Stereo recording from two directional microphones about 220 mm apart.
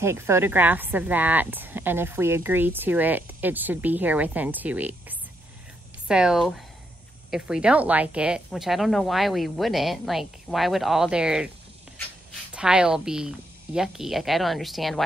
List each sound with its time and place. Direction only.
0.0 s speech: 10° right (ahead or behind)
12.5 s speech: 5° right (ahead or behind)